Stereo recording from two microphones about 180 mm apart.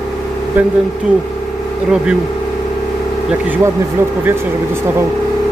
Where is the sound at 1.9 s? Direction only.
5° right (ahead or behind).